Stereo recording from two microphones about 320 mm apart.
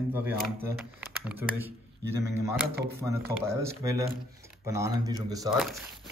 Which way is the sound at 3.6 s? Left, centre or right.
Centre.